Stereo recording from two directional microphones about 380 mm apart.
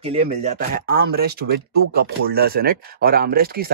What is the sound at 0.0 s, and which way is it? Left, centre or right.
Speech, centre.